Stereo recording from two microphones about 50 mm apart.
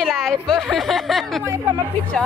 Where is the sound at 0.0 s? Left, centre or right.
Centre.